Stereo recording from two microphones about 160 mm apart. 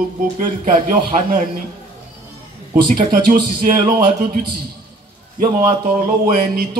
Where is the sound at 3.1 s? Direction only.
55° right (ahead or behind).